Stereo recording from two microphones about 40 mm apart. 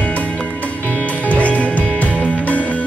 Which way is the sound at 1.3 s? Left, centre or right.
Left.